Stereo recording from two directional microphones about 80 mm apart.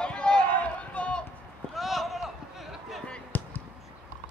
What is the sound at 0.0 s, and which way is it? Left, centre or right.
Run, centre.